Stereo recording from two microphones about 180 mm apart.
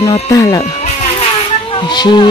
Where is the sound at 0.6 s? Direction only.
35° left (ahead or behind).